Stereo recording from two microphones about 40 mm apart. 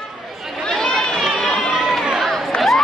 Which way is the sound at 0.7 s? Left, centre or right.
Centre.